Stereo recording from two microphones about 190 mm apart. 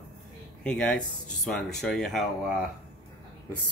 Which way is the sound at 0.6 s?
5° left (ahead or behind).